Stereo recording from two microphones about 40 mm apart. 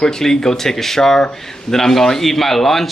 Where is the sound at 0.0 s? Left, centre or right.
Centre.